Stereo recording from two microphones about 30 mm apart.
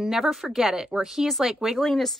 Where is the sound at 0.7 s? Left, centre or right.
Right.